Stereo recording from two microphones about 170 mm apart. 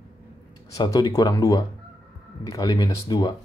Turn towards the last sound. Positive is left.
turn(degrees=25)  # may be behind; listen again after turning